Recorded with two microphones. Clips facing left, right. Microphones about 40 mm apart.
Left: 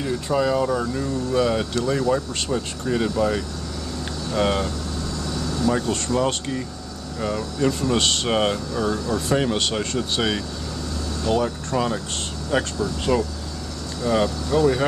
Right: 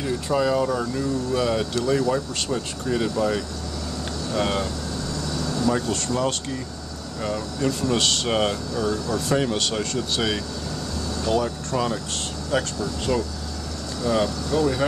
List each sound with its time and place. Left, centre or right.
0.0 s speech: centre
5.7 s speech: centre